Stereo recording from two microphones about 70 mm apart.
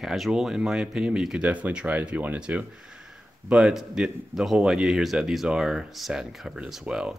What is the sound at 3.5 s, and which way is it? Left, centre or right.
Speech, centre.